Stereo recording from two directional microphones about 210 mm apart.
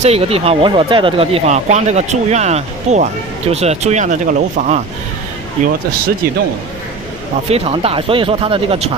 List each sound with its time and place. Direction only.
0.0 s speech: 30° right (ahead or behind)
7.4 s speech: 30° right (ahead or behind)